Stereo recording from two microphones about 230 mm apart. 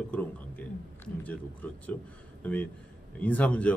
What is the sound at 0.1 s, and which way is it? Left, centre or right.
Speech, centre.